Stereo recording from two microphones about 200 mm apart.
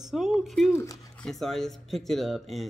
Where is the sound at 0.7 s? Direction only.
15° left (ahead or behind).